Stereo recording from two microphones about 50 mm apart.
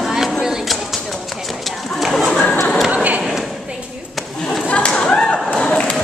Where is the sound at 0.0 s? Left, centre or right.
Centre.